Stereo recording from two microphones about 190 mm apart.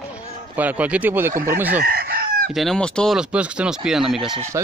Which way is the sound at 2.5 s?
5° left (ahead or behind).